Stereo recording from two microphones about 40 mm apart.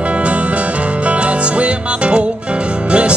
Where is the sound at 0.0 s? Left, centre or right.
Right.